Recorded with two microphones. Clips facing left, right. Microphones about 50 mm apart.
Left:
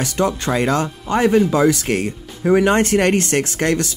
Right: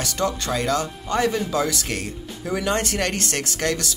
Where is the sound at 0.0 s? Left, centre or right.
Left.